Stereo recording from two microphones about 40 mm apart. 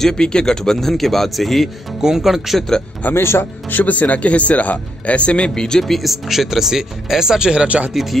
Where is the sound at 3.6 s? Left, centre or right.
Left; by 5.8 s centre.